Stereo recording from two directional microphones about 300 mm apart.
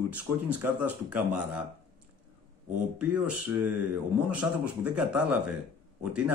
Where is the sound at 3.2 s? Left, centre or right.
Right.